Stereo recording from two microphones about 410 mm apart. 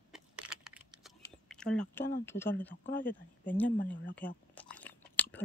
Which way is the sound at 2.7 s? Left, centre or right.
Left.